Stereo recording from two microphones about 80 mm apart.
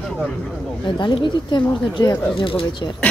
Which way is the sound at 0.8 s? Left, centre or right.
Left.